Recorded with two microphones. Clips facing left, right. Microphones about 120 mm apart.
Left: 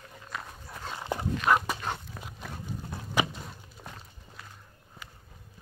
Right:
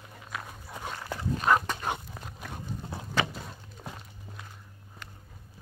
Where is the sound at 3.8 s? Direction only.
5° right (ahead or behind).